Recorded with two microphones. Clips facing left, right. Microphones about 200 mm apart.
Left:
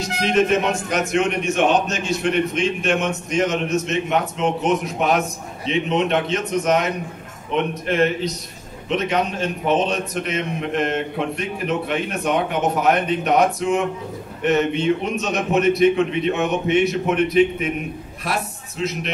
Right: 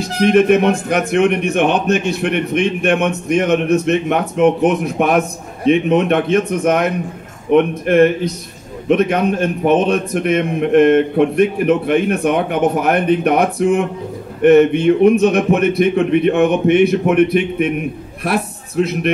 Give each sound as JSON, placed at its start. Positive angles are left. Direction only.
{"t": 0.2, "sound": "a man's voice", "side_deg": -55}